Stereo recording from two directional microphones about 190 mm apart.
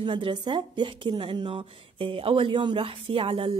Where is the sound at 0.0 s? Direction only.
25° right (ahead or behind).